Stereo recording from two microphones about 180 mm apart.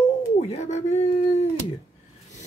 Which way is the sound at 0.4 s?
35° left (ahead or behind).